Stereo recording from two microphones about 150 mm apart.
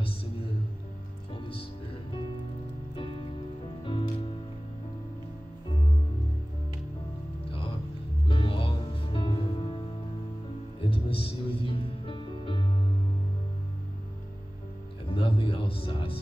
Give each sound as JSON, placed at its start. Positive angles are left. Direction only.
{"t": 1.3, "sound": "music", "side_deg": 35}
{"t": 3.0, "sound": "music", "side_deg": 35}
{"t": 8.3, "sound": "music", "side_deg": 35}
{"t": 15.0, "sound": "music", "side_deg": 35}